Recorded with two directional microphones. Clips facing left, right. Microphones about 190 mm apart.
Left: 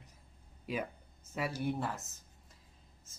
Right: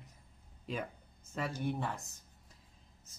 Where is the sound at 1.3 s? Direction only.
10° left (ahead or behind).